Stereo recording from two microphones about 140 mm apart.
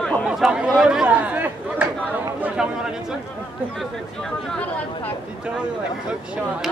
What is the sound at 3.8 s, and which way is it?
Speech, 5° left (ahead or behind).